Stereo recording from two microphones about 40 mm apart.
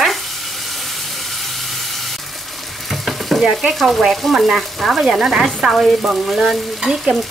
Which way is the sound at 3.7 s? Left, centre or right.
Centre.